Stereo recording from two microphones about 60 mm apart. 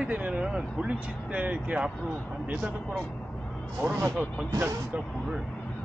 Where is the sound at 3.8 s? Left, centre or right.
Right.